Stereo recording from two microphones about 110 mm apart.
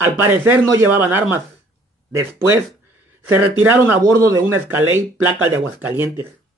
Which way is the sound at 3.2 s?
15° right (ahead or behind).